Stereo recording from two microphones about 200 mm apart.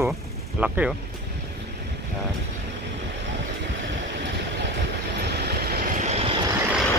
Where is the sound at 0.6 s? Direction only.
5° right (ahead or behind).